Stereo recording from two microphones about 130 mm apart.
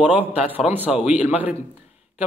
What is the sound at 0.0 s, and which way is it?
Speech, 15° right (ahead or behind).